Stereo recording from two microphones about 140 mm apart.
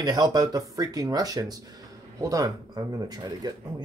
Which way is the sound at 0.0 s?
25° right (ahead or behind).